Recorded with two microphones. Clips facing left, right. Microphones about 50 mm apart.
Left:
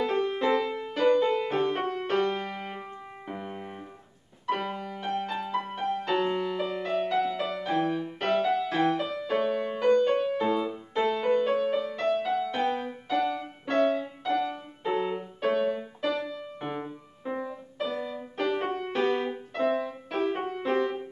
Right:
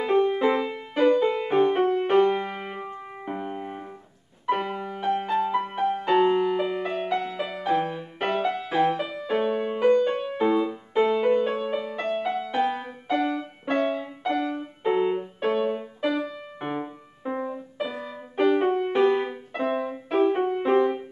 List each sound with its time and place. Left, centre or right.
0.0 s music: centre